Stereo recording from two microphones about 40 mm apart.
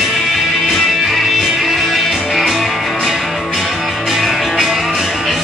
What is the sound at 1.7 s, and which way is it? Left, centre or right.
Music, centre.